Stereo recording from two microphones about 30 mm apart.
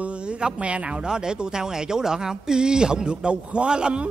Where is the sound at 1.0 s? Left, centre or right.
Right.